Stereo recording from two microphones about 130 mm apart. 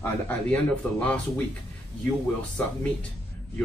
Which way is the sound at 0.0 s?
10° left (ahead or behind).